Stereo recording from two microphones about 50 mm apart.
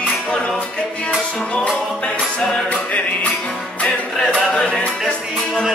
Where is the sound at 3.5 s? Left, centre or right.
Centre.